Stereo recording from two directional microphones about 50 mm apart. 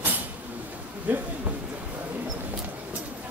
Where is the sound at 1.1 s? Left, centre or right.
Right.